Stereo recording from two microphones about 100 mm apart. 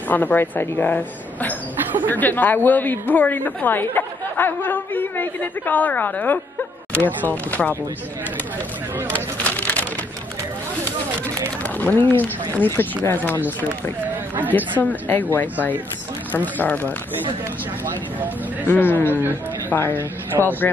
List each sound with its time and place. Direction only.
0.1 s a woman's voice: 15° left (ahead or behind)
9.1 s a sound: 15° left (ahead or behind)
11.6 s speech: 15° left (ahead or behind)
14.8 s a woman's voice: 15° left (ahead or behind)
18.7 s speech: 20° left (ahead or behind)